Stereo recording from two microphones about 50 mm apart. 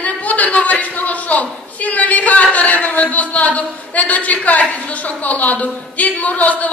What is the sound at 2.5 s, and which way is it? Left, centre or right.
A woman's voice, left.